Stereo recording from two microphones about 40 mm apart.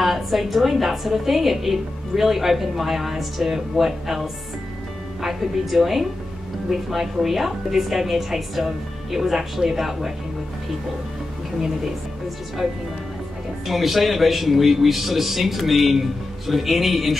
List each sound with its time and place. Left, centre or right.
0.0 s a woman's voice: centre
13.7 s a woman's voice: centre